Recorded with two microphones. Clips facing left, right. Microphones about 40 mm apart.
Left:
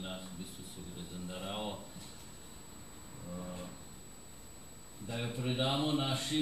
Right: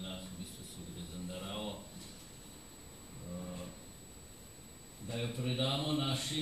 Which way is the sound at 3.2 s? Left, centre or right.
Centre.